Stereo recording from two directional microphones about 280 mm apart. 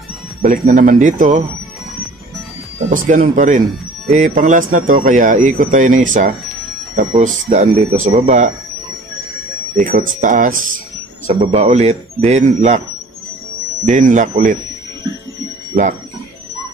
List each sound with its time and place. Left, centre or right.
0.4 s speech: right
2.9 s speech: right
9.8 s speech: right
13.8 s speech: right